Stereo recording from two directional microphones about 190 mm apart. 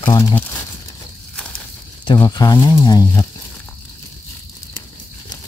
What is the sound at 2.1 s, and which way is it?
Speech, 20° left (ahead or behind).